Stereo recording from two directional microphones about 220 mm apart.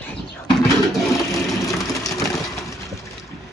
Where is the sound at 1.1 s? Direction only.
15° left (ahead or behind).